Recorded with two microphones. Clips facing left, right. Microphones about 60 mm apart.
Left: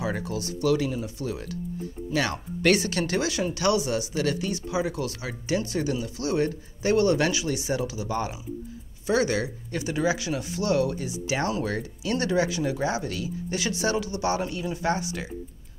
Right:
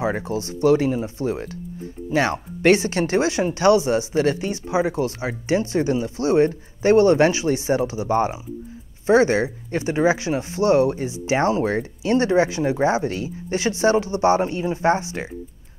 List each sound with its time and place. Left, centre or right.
0.0 s speech: right